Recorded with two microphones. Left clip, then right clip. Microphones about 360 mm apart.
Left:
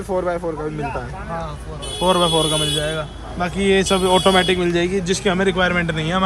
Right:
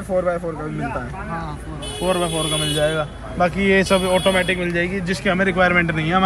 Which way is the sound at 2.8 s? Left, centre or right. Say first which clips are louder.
Right 4 dB; centre.